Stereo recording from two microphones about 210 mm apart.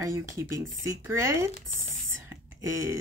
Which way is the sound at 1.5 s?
30° left (ahead or behind).